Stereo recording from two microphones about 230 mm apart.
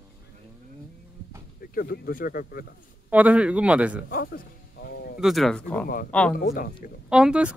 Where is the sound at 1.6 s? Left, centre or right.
Left.